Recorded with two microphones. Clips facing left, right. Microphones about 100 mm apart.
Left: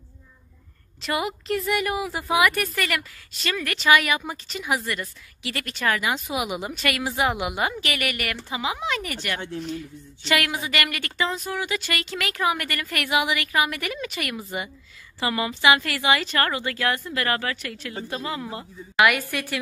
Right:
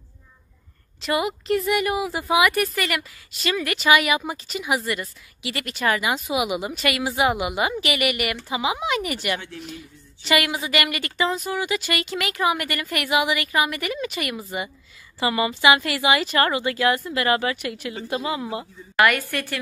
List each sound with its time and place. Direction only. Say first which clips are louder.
1.0 s speech: right 3 dB; centre (ahead or behind)
9.4 s speech: left 5 dB; 20° left (ahead or behind)
9.7 s speech: left 6 dB; 5° right (ahead or behind)
18.9 s a woman's voice: right 1 dB; 5° left (ahead or behind)